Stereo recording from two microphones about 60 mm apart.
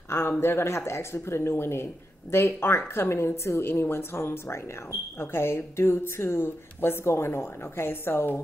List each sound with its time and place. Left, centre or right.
0.1 s speech: left